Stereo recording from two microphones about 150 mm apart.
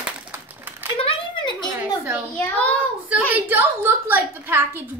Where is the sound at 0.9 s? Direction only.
35° left (ahead or behind).